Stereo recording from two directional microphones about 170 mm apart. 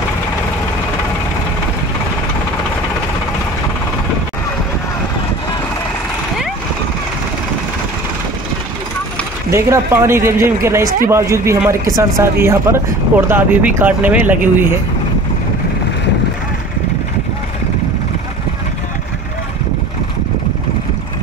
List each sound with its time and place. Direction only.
9.5 s a man's voice: 15° right (ahead or behind)